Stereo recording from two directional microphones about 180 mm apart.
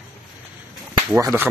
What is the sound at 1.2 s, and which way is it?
Speech, 15° right (ahead or behind).